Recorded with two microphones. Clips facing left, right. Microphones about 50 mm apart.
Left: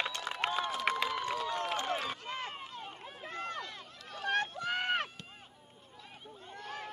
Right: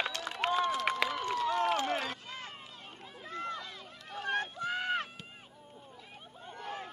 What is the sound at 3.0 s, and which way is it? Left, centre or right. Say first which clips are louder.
Run: right 3 dB; left.